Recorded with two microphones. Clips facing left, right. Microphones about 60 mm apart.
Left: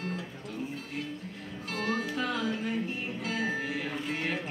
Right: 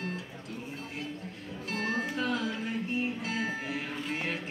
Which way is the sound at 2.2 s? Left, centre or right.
Left.